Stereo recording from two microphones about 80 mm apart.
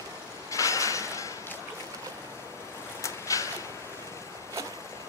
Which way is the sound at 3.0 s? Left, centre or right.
Left.